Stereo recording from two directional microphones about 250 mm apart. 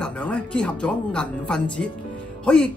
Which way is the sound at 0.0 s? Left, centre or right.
Centre.